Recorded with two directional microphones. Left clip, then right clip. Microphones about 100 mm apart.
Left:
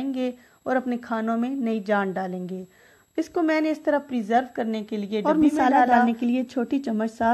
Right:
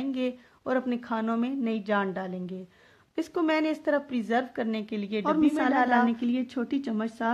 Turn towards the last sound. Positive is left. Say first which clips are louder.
# left 6 dB
turn(degrees=40)  # may be behind; listen again after turning